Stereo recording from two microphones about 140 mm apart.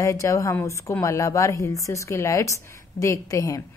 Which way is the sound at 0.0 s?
25° left (ahead or behind).